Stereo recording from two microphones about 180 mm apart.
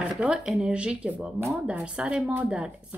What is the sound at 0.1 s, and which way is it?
Speech, 5° right (ahead or behind).